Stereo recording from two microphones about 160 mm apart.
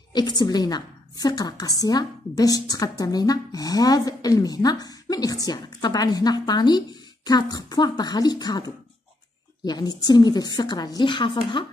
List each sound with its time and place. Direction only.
0.1 s a woman's voice: 25° left (ahead or behind)